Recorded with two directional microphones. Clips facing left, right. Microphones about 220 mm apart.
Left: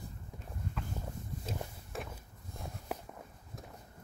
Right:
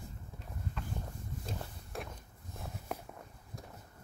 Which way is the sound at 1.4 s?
Centre (ahead or behind).